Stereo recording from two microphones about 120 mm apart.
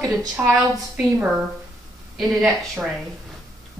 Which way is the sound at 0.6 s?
10° right (ahead or behind).